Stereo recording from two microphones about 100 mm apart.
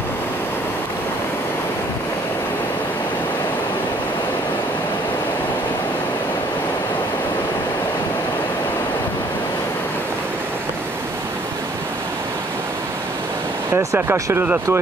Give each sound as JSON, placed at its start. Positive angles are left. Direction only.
{"t": 13.7, "sound": "speech", "side_deg": -25}
{"t": 14.4, "sound": "speech", "side_deg": -15}